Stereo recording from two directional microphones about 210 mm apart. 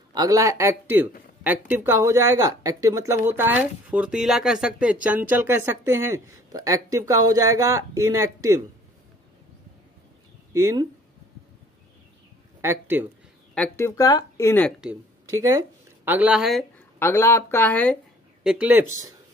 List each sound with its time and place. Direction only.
0.1 s speech: 15° right (ahead or behind)
10.5 s speech: 15° right (ahead or behind)
12.6 s speech: 10° right (ahead or behind)
13.6 s speech: 15° left (ahead or behind)
15.2 s speech: 15° right (ahead or behind); by 17.9 s 5° left (ahead or behind)
18.4 s speech: 5° right (ahead or behind)